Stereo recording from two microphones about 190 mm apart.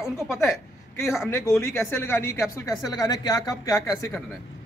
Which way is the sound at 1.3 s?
15° left (ahead or behind).